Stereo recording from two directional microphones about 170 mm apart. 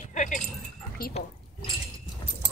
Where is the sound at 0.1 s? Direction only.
45° left (ahead or behind).